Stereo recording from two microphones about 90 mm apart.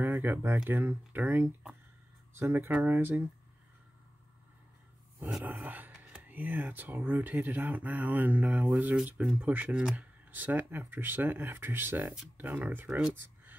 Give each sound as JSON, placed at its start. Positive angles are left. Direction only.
{"t": 0.0, "sound": "speech", "side_deg": -25}
{"t": 5.4, "sound": "speech", "side_deg": -20}